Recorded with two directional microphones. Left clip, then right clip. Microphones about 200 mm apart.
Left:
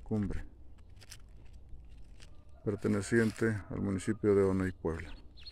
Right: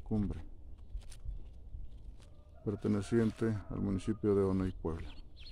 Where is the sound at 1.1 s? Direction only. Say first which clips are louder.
Left 8 dB; 55° left (ahead or behind).